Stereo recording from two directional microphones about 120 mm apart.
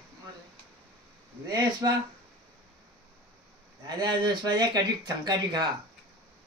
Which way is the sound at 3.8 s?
35° right (ahead or behind).